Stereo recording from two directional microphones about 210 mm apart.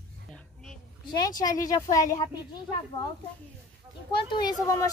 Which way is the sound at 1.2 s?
20° left (ahead or behind).